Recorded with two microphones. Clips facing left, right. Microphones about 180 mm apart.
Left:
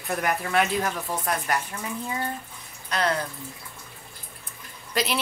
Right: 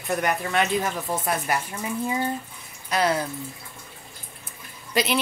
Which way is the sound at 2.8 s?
10° right (ahead or behind).